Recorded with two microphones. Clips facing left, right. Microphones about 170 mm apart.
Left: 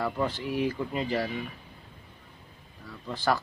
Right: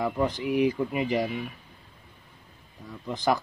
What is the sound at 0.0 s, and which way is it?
Speech, 15° right (ahead or behind).